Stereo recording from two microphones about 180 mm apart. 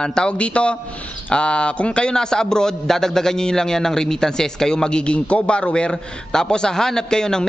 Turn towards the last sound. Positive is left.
turn(degrees=5)  # may be behind; listen again after turning